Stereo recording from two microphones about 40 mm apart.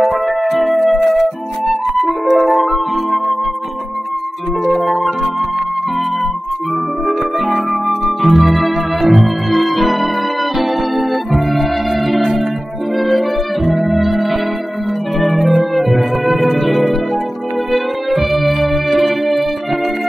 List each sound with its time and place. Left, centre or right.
0.0 s music: centre
4.7 s music: centre
7.1 s music: centre